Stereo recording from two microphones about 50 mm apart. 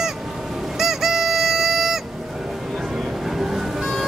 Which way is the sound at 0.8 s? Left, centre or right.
Centre.